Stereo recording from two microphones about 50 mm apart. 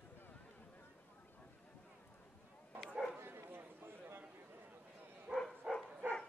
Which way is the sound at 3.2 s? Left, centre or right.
Right.